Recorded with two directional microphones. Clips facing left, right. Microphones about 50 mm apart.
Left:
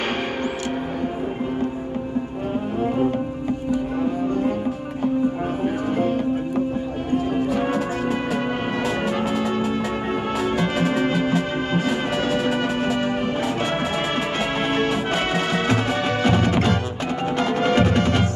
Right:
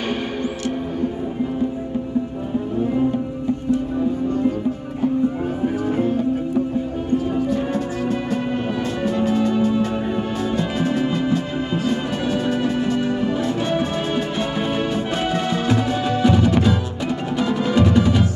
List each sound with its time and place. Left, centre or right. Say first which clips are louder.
8.8 s music: right 2 dB; left
13.0 s music: right 2 dB; left
14.5 s music: left 1 dB; left
15.1 s music: even; left
16.3 s music: right 3 dB; left